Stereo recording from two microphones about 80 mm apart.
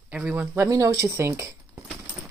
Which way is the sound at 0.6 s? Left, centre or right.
Right.